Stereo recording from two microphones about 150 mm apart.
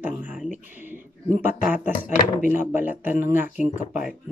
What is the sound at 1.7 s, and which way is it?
Speech, 15° right (ahead or behind).